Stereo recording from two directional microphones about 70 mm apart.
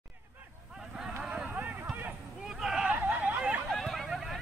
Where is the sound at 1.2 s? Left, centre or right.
Centre.